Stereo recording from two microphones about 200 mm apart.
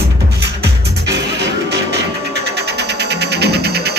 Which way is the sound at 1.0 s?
60° right (ahead or behind).